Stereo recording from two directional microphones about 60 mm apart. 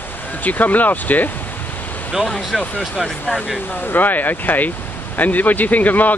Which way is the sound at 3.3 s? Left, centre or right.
Left.